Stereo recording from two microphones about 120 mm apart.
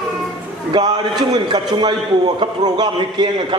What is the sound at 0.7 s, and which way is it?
A man's voice, 35° right (ahead or behind).